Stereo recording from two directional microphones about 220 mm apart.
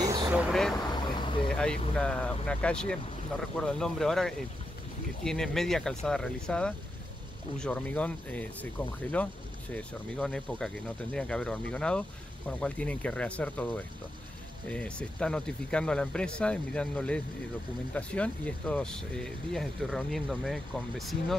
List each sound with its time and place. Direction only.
0.0 s vehicle: 15° right (ahead or behind)
0.3 s speech: centre (ahead or behind)
0.8 s vehicle: 20° left (ahead or behind)
1.5 s speech: 5° left (ahead or behind)